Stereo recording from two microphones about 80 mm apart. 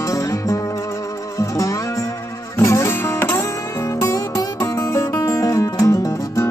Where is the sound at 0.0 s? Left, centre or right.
Left.